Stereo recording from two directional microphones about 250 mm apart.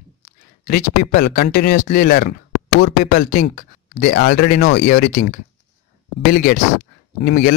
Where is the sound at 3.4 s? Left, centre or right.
Left.